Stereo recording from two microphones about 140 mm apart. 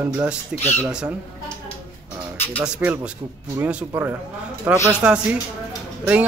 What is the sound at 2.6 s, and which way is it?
A man's voice, 10° right (ahead or behind).